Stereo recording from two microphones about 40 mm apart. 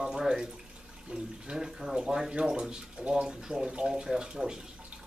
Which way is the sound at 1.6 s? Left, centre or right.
Centre.